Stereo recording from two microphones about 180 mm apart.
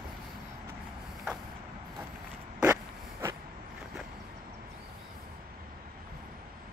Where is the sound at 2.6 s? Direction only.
15° right (ahead or behind).